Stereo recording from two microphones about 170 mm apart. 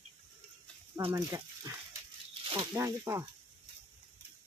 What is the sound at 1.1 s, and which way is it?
Speech, 20° right (ahead or behind).